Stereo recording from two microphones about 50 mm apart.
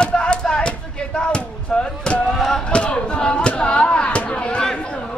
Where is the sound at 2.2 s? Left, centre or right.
Centre.